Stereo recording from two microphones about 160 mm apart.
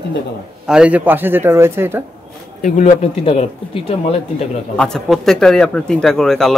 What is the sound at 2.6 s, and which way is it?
Speech, 50° left (ahead or behind).